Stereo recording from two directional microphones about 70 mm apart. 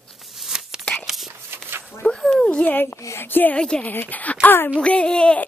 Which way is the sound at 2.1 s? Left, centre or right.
Centre.